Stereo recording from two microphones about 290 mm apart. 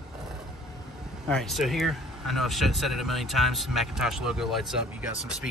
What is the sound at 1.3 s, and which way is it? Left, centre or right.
Speech, centre.